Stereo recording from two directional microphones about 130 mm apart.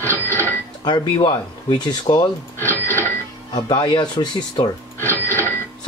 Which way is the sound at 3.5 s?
35° left (ahead or behind).